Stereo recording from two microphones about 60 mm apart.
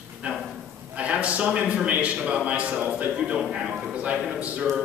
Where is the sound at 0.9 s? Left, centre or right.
Right.